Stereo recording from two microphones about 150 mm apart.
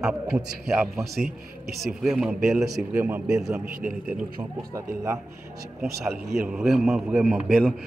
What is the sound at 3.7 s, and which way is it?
Speech, 75° right (ahead or behind).